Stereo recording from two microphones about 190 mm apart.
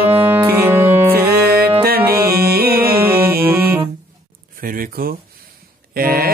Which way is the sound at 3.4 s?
10° right (ahead or behind).